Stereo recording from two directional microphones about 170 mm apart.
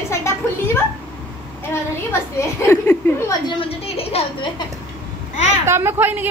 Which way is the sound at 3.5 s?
35° left (ahead or behind).